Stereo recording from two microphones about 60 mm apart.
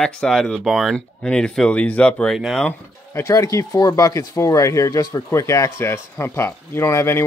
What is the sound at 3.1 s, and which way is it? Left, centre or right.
Speech, left.